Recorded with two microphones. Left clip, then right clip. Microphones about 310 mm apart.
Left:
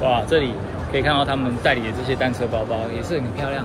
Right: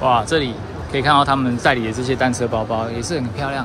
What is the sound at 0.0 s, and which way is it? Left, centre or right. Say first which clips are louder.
Speech: right 2 dB; centre.